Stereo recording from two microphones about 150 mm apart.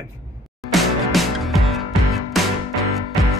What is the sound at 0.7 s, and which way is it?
Music, centre (ahead or behind).